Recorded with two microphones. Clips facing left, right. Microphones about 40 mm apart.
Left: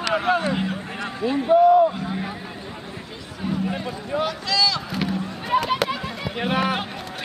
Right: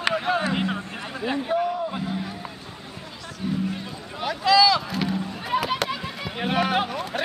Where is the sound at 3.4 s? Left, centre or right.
Left.